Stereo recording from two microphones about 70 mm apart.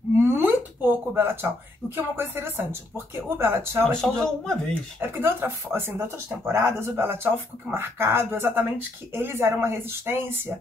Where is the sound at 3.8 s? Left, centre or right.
Centre.